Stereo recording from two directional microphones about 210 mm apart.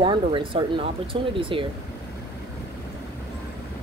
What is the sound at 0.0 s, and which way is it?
Speech, 25° right (ahead or behind).